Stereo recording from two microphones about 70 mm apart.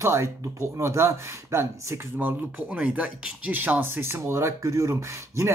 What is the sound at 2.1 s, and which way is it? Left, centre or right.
Speech, centre.